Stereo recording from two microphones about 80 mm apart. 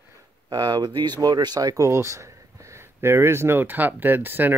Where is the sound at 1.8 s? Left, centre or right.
Right.